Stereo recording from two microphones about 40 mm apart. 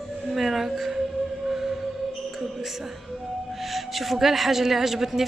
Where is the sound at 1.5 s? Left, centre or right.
Centre.